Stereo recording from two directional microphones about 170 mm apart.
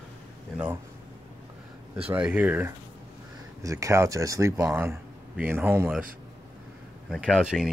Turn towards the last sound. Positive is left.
turn(degrees=0)  # may be behind; listen again after turning